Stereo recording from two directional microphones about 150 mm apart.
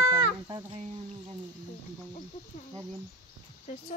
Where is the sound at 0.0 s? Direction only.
20° right (ahead or behind).